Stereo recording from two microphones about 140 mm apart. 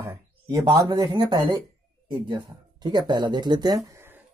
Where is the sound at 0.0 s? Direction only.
25° right (ahead or behind).